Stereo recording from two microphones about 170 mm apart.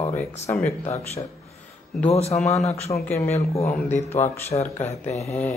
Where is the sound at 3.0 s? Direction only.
10° left (ahead or behind).